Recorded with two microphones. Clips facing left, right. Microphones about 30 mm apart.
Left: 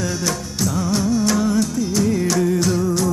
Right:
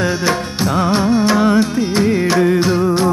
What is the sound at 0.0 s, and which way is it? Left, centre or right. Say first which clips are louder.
Music: right 7 dB; right.